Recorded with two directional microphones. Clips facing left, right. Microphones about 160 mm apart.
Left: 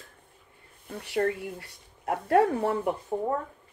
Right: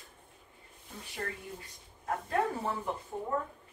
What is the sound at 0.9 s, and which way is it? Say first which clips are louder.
Speech: left 13 dB; 65° left (ahead or behind).